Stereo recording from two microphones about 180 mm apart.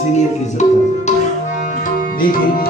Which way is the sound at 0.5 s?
40° left (ahead or behind).